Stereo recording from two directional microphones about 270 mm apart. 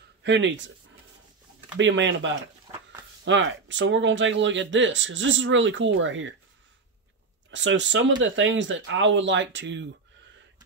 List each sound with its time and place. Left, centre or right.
0.2 s speech: right
1.8 s speech: right
7.5 s speech: right